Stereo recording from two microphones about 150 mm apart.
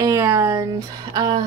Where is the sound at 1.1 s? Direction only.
25° right (ahead or behind).